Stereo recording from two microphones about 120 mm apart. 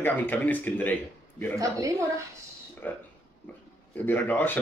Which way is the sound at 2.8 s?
15° left (ahead or behind).